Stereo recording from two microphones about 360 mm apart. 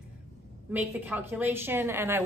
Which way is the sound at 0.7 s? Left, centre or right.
Centre.